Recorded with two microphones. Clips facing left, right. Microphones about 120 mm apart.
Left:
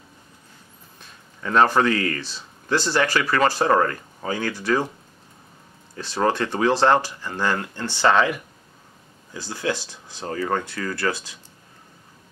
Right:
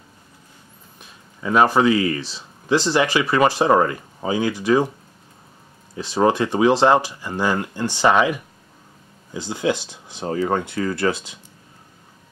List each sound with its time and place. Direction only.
0.9 s speech: 10° right (ahead or behind)
5.9 s speech: 15° right (ahead or behind)